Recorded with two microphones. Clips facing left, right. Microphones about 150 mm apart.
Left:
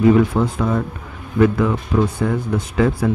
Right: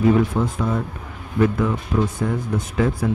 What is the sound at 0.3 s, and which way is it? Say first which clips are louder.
Speech: left 3 dB; 80° left.